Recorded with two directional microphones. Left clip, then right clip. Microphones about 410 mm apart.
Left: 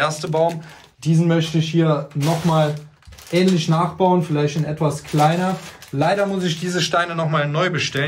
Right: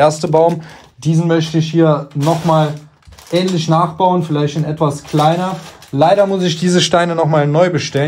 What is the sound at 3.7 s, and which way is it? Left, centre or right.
A man's voice, centre.